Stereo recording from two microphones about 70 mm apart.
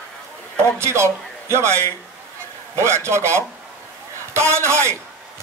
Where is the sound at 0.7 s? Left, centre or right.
Right.